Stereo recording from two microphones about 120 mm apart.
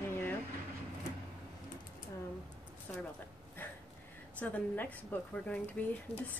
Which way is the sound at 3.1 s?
15° left (ahead or behind).